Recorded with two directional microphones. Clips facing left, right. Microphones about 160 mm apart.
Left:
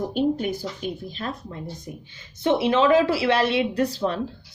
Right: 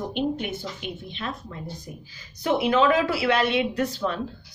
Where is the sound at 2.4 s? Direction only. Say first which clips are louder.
Left 1 dB; 30° left (ahead or behind).